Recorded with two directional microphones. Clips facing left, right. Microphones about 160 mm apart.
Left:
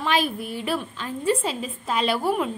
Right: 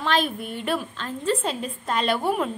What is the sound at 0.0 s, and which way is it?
A woman's voice, 5° left (ahead or behind).